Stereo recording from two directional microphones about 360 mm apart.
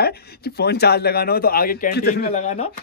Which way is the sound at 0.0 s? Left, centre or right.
Left.